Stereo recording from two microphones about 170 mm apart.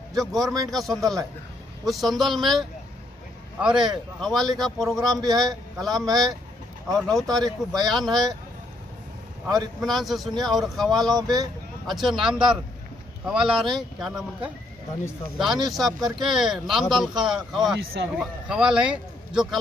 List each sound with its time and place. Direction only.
0.1 s a man's voice: centre (ahead or behind)
9.8 s a man's voice: centre (ahead or behind)
11.1 s speech: 20° right (ahead or behind)
11.9 s a man's voice: centre (ahead or behind)